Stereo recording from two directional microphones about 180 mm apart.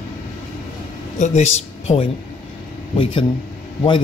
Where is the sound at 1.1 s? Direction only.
40° left (ahead or behind).